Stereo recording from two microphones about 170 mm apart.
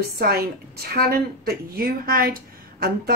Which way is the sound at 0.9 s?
65° right (ahead or behind).